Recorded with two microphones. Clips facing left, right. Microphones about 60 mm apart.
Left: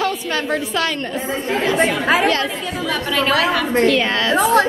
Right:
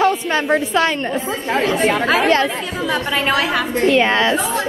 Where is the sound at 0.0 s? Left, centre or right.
Right.